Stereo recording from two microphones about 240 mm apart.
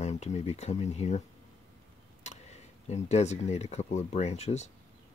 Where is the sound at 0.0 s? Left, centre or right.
Left.